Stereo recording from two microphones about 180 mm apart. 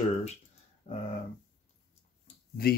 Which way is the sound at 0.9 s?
35° left (ahead or behind).